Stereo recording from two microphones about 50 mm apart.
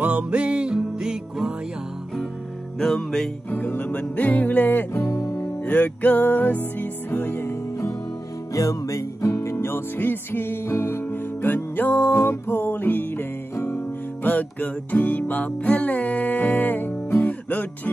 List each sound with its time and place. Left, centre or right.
0.0 s music: right
0.7 s music: centre
2.8 s music: centre
3.4 s music: left
4.9 s music: left
5.7 s music: left
8.8 s music: left
14.2 s music: left